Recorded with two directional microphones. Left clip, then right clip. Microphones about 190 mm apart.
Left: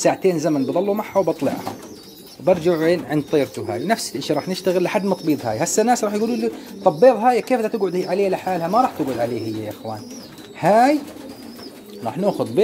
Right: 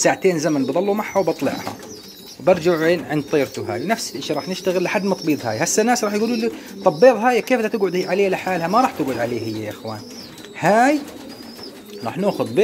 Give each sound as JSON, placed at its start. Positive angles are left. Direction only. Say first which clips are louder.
{"t": 0.0, "sound": "speech", "louder": "right 1 dB", "side_deg": 5}
{"t": 4.2, "sound": "speech", "louder": "left 2 dB", "side_deg": 25}
{"t": 12.0, "sound": "speech", "louder": "even", "side_deg": 5}